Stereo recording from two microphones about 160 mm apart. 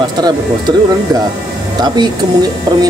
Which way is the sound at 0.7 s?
25° right (ahead or behind).